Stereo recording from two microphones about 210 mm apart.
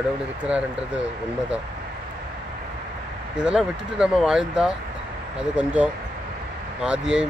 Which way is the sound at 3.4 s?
5° right (ahead or behind).